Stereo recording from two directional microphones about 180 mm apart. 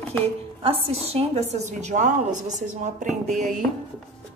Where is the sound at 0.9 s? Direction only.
35° right (ahead or behind).